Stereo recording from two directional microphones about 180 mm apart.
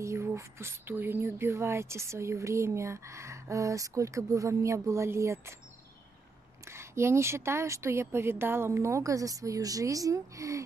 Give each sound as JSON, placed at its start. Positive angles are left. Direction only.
{"t": 0.0, "sound": "speech", "side_deg": -15}
{"t": 6.6, "sound": "speech", "side_deg": -15}